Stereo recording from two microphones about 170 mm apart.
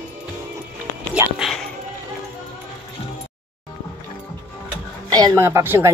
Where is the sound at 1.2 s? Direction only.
15° right (ahead or behind).